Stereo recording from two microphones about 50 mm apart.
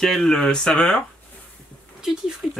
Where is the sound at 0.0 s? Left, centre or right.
Centre.